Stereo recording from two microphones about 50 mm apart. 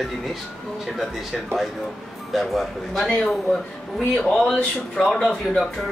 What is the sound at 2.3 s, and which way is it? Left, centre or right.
Speech, centre.